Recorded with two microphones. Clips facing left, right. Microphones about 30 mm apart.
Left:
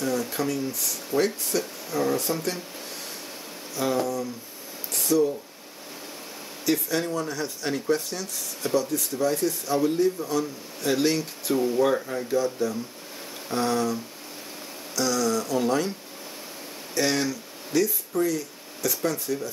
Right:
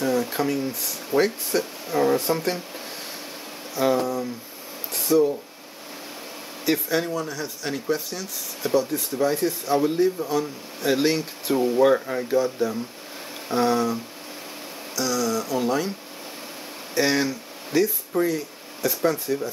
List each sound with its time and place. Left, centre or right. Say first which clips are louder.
0.0 s speech: right 3 dB; centre
3.7 s speech: right 4 dB; centre
4.9 s a sound: right 3 dB; centre
6.6 s speech: right 2 dB; right
7.1 s speech: even; centre
9.1 s speech: right 3 dB; right
15.0 s speech: even; centre
16.9 s speech: right 3 dB; centre